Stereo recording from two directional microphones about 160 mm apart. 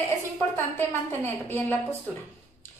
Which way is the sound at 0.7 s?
15° left (ahead or behind).